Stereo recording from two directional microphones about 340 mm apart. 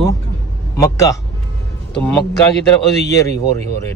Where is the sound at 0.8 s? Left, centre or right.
Centre.